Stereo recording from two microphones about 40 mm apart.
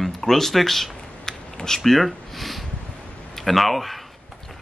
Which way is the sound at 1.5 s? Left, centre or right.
Centre.